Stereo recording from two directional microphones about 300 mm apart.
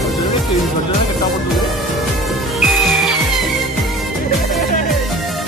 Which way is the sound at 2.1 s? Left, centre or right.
Centre.